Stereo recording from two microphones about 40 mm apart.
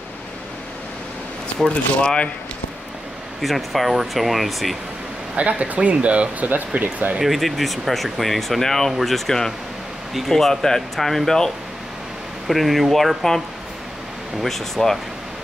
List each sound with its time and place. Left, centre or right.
2.0 s speech: left
3.3 s speech: centre
5.3 s speech: right
7.2 s speech: centre
12.4 s speech: centre
14.4 s speech: centre